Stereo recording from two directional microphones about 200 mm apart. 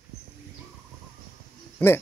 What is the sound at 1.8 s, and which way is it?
Speech, 10° left (ahead or behind).